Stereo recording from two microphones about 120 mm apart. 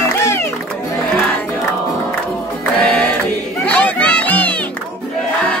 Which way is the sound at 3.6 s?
10° left (ahead or behind).